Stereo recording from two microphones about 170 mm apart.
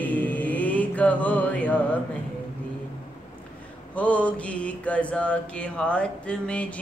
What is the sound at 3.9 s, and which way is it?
Mantra, 10° left (ahead or behind).